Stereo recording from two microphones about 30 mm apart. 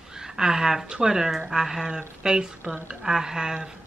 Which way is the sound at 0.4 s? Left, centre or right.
Right.